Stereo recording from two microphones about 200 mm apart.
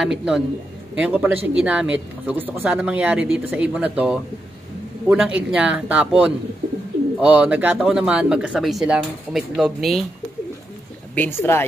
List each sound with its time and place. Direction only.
0.0 s speech: centre (ahead or behind)
11.1 s speech: 10° left (ahead or behind)